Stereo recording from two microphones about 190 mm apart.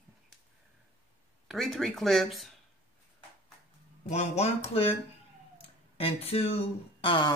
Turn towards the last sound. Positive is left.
turn(degrees=25)  # may be behind; listen again after turning